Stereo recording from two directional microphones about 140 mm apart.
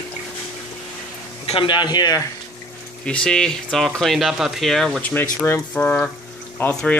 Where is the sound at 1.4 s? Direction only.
35° left (ahead or behind).